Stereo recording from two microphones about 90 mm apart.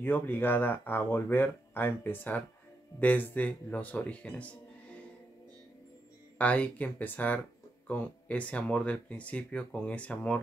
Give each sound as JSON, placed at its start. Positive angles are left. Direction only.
{"t": 0.0, "sound": "speech", "side_deg": 20}
{"t": 6.3, "sound": "speech", "side_deg": 15}